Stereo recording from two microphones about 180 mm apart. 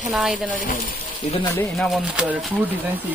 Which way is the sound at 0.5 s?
45° left (ahead or behind).